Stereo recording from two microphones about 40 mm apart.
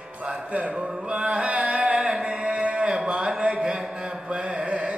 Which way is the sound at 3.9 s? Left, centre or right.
Right.